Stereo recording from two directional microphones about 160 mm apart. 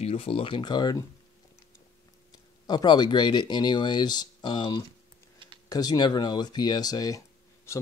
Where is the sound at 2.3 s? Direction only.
25° left (ahead or behind).